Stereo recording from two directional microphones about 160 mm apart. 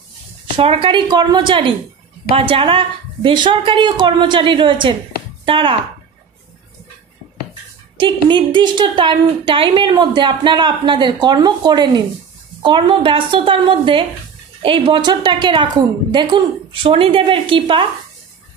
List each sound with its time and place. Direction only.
0.6 s a woman's voice: 35° right (ahead or behind)
8.0 s a woman's voice: 30° right (ahead or behind)